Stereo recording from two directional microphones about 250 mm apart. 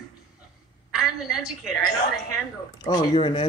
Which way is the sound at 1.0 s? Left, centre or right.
Centre.